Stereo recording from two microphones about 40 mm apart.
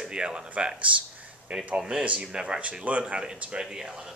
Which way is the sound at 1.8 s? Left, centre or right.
Centre.